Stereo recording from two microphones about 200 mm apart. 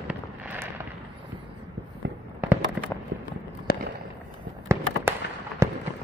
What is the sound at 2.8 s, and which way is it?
Fireworks, 5° right (ahead or behind).